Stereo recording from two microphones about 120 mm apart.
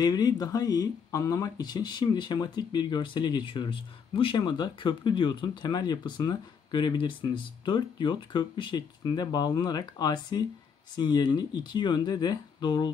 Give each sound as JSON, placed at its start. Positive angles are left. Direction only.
{"t": 0.0, "sound": "speech", "side_deg": 35}